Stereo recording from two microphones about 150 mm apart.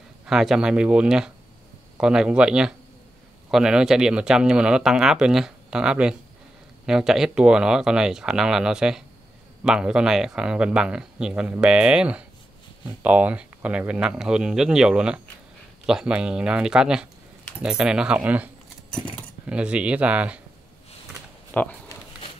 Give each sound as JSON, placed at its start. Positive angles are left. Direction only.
{"t": 0.3, "sound": "speech", "side_deg": 0}
{"t": 21.5, "sound": "speech", "side_deg": 10}